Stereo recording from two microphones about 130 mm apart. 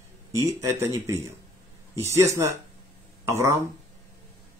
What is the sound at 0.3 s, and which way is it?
Speech, 20° right (ahead or behind).